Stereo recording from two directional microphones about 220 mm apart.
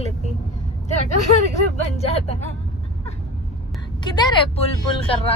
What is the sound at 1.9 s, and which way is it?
Speech, 30° left (ahead or behind).